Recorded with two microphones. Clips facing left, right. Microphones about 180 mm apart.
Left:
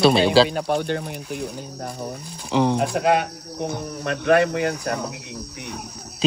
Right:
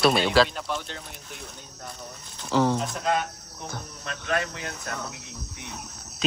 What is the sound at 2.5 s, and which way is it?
Speech, 15° left (ahead or behind).